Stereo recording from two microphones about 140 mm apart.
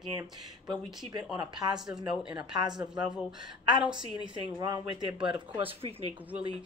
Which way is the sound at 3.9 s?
35° right (ahead or behind).